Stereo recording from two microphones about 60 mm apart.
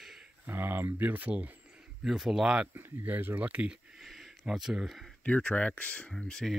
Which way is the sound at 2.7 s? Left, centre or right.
Right.